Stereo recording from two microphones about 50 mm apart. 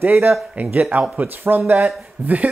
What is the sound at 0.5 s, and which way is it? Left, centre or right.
Speech, right.